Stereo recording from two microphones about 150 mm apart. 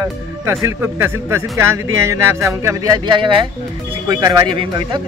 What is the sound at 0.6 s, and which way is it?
Speech, 15° right (ahead or behind).